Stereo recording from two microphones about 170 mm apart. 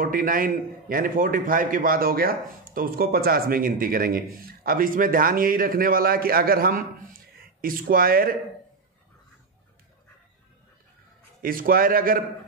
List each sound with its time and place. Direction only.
0.0 s a man's voice: 55° right (ahead or behind)
11.4 s a man's voice: 55° right (ahead or behind)